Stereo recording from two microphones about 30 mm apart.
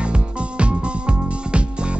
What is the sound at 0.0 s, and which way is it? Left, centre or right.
Music, right.